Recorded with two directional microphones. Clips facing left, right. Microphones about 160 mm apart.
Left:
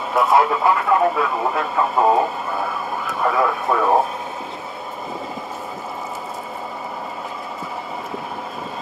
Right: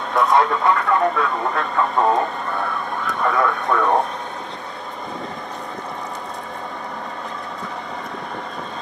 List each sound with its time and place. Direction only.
0.1 s speech: 5° left (ahead or behind)